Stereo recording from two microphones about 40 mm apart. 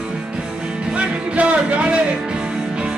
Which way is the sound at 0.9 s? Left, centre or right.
Right.